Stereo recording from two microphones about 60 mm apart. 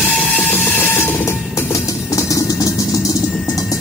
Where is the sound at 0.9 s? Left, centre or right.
Left.